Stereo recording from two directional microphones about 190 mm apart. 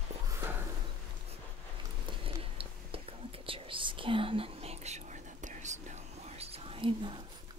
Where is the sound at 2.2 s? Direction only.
30° right (ahead or behind).